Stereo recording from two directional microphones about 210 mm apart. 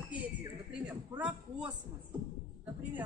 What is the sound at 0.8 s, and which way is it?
Speech, 5° right (ahead or behind).